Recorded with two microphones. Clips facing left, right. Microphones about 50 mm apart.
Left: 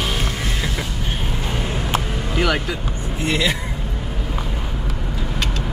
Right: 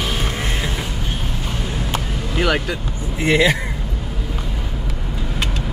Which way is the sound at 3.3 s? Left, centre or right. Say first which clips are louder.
Right 5 dB; right.